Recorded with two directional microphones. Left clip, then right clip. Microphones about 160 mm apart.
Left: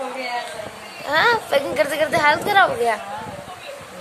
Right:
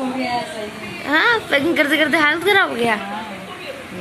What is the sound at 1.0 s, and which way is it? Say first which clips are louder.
A woman's voice: right 1 dB; 20° left (ahead or behind).